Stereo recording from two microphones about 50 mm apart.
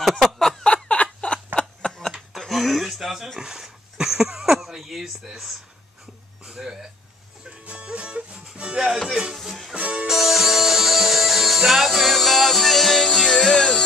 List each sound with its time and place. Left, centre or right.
0.2 s a sound: centre
0.8 s a sound: centre
2.1 s a sound: centre
3.3 s speech: centre
7.4 s music: right
8.5 s speech: centre
9.3 s speech: centre
9.8 s speech: centre
10.0 s speech: centre